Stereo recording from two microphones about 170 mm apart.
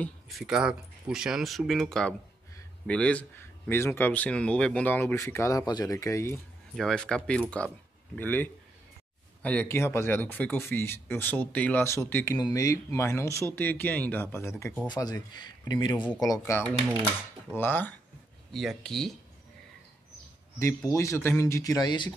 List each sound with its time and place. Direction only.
0.0 s speech: centre (ahead or behind); by 6.3 s 15° left (ahead or behind)
6.7 s speech: centre (ahead or behind)
14.9 s speech: 25° left (ahead or behind)
18.5 s speech: centre (ahead or behind)
20.5 s speech: 20° left (ahead or behind)